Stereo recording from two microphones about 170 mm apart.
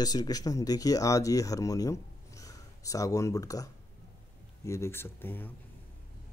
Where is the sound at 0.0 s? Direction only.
20° left (ahead or behind).